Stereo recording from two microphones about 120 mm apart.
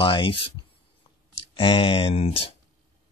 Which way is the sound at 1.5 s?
45° left (ahead or behind).